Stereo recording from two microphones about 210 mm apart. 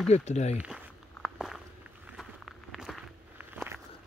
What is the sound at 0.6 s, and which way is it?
Walk, 5° right (ahead or behind).